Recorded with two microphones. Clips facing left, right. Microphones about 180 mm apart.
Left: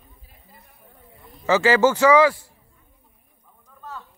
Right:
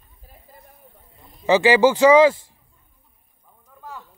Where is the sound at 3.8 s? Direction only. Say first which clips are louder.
Even; 10° right (ahead or behind).